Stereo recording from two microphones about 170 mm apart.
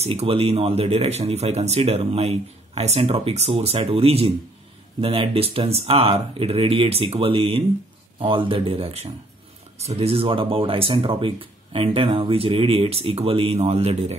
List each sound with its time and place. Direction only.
0.0 s speech: 35° right (ahead or behind)